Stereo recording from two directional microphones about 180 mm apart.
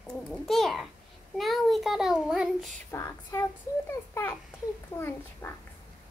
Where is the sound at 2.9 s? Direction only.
15° left (ahead or behind).